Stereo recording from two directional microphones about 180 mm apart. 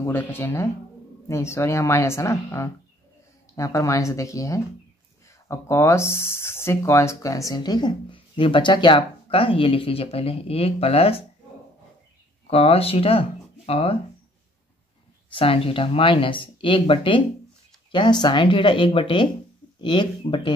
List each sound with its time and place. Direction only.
0.0 s speech: 10° left (ahead or behind); by 11.2 s 35° left (ahead or behind)
12.4 s speech: 35° left (ahead or behind)
15.2 s speech: 30° left (ahead or behind)